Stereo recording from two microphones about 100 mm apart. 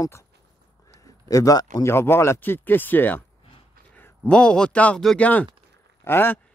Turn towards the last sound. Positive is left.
turn(degrees=20)  # may be behind; listen again after turning